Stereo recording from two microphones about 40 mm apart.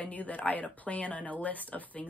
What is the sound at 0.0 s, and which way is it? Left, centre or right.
Speech, left.